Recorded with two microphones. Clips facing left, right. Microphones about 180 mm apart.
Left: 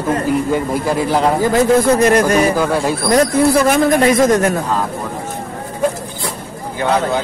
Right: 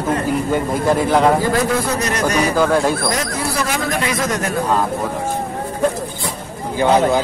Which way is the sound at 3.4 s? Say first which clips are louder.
Left 9 dB; 55° left (ahead or behind).